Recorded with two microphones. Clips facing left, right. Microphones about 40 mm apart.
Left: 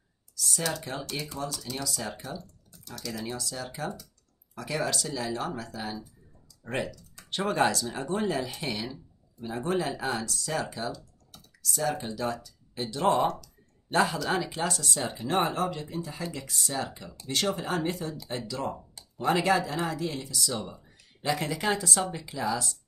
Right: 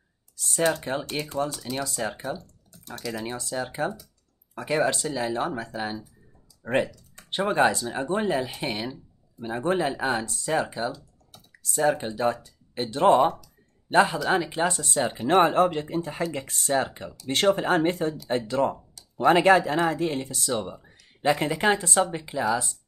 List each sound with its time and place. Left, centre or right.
0.4 s speech: right